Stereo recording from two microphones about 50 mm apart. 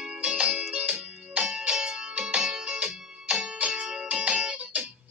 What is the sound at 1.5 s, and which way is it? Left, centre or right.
Music, centre.